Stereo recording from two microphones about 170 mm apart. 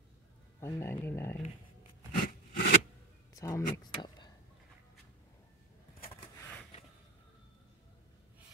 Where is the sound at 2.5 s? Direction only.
60° left (ahead or behind).